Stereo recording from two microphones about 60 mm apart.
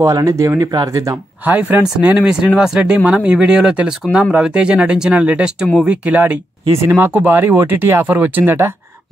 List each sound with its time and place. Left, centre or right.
0.0 s speech: right
1.4 s speech: right
6.9 s speech: right